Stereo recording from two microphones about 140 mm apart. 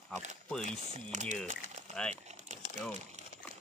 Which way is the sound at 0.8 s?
50° right (ahead or behind).